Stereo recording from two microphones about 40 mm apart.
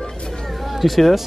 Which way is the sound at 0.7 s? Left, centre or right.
Centre.